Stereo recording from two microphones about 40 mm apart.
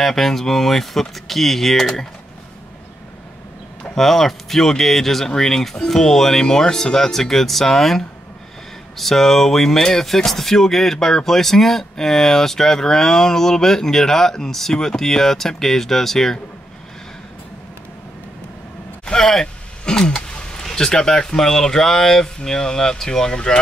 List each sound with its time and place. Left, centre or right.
0.0 s speech: centre
3.9 s speech: centre
19.0 s a sound: centre
20.2 s speech: centre